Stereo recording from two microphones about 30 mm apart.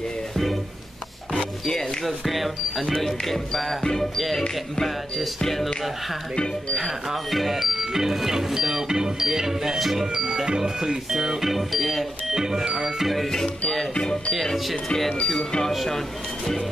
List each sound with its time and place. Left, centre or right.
2.0 s speech: centre
3.8 s music: centre
6.8 s speech: centre
10.1 s speech: right
11.1 s speech: centre
12.3 s speech: centre
13.0 s speech: centre